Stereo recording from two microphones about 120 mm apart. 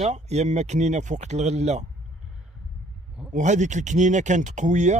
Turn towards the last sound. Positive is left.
turn(degrees=-85)